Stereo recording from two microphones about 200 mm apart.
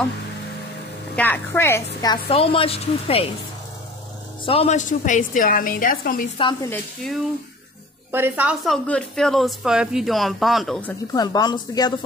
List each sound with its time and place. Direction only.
1.1 s a woman's voice: 10° left (ahead or behind)
2.0 s a woman's voice: 25° left (ahead or behind)
4.5 s a woman's voice: 30° left (ahead or behind)
6.7 s speech: centre (ahead or behind)
8.1 s a woman's voice: 10° right (ahead or behind)
8.8 s speech: 5° left (ahead or behind)
11.1 s a woman's voice: 20° left (ahead or behind)